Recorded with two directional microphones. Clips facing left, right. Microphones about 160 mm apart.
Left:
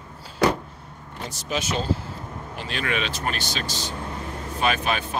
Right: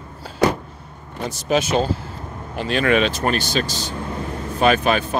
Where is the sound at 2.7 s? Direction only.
55° right (ahead or behind).